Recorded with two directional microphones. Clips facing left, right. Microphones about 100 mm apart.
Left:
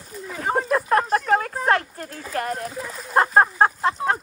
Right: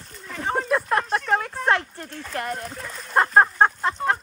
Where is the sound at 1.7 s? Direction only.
40° left (ahead or behind).